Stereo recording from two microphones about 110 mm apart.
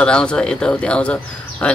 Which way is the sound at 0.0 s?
10° left (ahead or behind).